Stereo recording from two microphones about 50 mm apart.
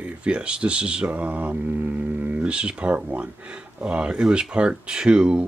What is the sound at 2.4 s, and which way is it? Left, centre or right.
Speech, right.